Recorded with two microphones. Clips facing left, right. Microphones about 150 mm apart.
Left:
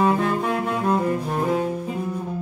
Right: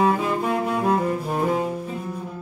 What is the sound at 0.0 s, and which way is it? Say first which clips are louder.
Saxophone: left 1 dB; 5° right (ahead or behind).